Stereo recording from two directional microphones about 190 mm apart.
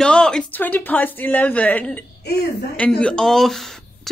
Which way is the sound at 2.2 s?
60° left (ahead or behind).